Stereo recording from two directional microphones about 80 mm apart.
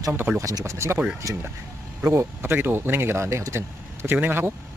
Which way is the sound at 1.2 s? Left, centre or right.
Right.